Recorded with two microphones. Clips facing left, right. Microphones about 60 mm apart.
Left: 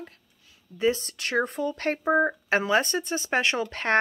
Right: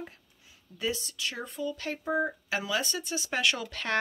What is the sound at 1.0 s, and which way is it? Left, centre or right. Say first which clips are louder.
Speech: left 10 dB; left.